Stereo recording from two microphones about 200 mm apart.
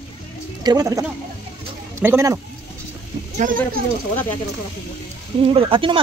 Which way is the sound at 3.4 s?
40° right (ahead or behind).